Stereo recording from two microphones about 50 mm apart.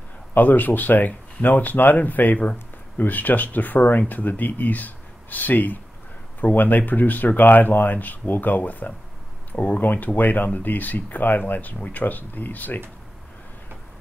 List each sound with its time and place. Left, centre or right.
0.3 s speech: left